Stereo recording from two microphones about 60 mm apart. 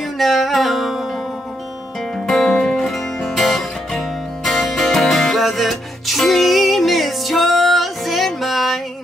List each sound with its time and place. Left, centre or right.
0.2 s music: centre
2.1 s music: centre
3.3 s guitar: centre
4.5 s music: centre